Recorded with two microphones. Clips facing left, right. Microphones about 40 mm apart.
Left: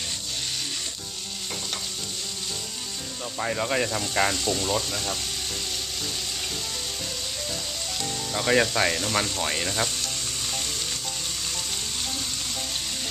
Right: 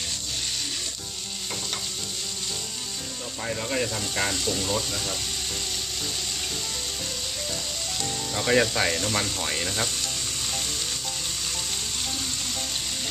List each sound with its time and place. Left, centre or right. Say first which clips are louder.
3.3 s speech: left 3 dB; centre
8.0 s speech: left 1 dB; centre